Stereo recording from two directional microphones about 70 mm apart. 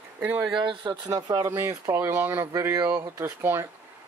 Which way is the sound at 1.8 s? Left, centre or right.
Right.